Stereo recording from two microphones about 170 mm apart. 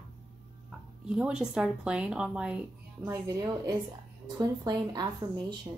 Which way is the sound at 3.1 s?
20° right (ahead or behind).